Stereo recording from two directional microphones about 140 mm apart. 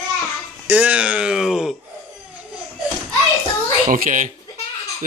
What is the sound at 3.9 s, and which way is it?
Speech, 70° right (ahead or behind).